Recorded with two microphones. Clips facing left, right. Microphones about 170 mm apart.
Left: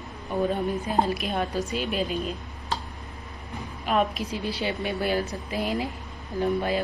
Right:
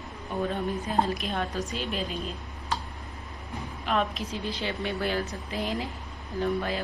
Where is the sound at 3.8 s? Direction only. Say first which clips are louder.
Left 3 dB; 10° left (ahead or behind).